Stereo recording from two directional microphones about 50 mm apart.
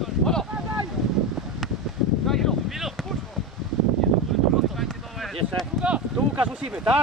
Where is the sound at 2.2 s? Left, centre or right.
Centre.